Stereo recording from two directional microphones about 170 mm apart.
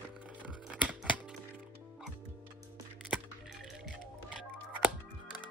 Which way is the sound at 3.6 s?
Centre (ahead or behind).